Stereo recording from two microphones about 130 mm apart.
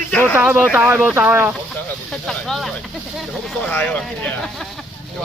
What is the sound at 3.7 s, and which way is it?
Speech, 15° left (ahead or behind).